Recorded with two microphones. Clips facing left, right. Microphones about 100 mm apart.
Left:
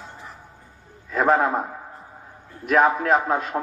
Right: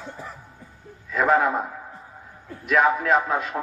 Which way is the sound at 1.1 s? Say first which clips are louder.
Left 1 dB; 35° left (ahead or behind).